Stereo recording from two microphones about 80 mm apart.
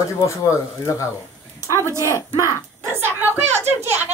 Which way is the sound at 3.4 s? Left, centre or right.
Right.